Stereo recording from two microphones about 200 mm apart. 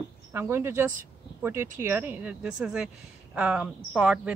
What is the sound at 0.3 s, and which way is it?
A woman's voice, 10° right (ahead or behind).